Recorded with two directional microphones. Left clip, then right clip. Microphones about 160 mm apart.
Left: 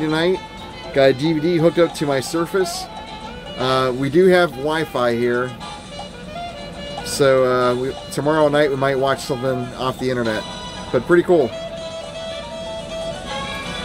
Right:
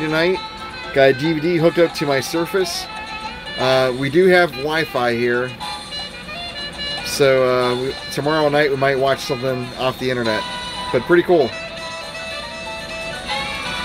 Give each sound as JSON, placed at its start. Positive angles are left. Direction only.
{"t": 0.0, "sound": "speech", "side_deg": -5}
{"t": 7.1, "sound": "music", "side_deg": -5}
{"t": 7.4, "sound": "speech", "side_deg": -5}
{"t": 7.7, "sound": "speech", "side_deg": -20}
{"t": 8.4, "sound": "speech", "side_deg": -5}
{"t": 10.9, "sound": "speech", "side_deg": -20}
{"t": 13.4, "sound": "music", "side_deg": 0}